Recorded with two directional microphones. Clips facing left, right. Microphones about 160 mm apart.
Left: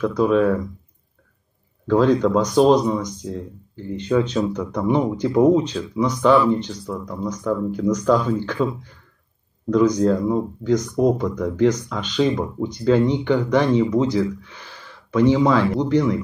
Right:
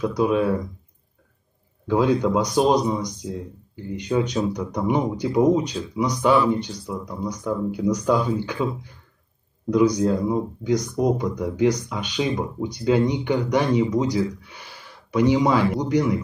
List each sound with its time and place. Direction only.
0.0 s speech: 15° right (ahead or behind)
1.9 s speech: 10° right (ahead or behind)